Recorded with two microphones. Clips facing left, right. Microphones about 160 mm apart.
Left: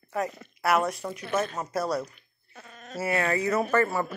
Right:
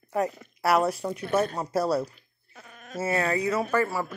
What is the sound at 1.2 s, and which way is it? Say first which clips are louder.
Speech: right 3 dB; 35° right (ahead or behind).